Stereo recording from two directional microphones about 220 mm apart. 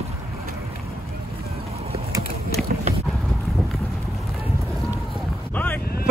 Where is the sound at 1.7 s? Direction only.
25° right (ahead or behind).